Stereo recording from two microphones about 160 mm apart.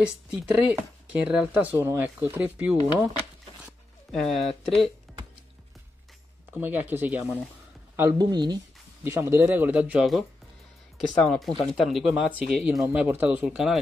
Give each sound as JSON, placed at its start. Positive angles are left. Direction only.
{"t": 0.0, "sound": "speech", "side_deg": -5}
{"t": 3.6, "sound": "speech", "side_deg": 0}
{"t": 6.5, "sound": "speech", "side_deg": -10}
{"t": 8.2, "sound": "speech", "side_deg": -25}
{"t": 9.0, "sound": "speech", "side_deg": -15}
{"t": 11.2, "sound": "speech", "side_deg": 0}